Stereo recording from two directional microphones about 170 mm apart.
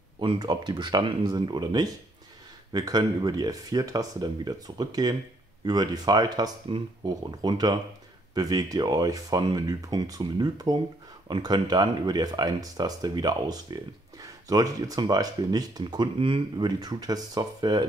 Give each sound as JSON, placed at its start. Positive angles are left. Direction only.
{"t": 0.2, "sound": "speech", "side_deg": -25}